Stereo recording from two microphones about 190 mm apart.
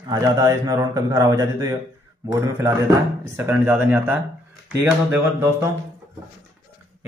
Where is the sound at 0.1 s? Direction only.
20° right (ahead or behind).